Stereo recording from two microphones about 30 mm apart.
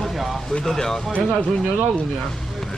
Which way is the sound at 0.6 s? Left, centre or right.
Centre.